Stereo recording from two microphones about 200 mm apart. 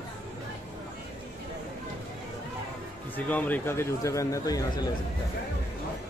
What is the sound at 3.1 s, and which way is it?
Speech, 10° left (ahead or behind).